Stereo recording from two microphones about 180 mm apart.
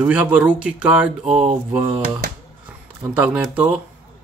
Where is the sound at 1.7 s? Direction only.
10° right (ahead or behind).